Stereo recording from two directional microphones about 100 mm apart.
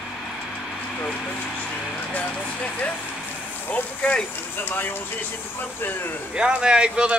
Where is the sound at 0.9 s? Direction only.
10° left (ahead or behind).